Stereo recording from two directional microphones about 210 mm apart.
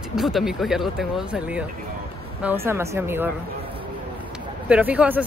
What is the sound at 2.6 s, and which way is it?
Speech, 10° right (ahead or behind).